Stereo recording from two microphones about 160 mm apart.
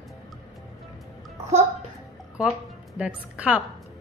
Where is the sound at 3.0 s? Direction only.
10° right (ahead or behind).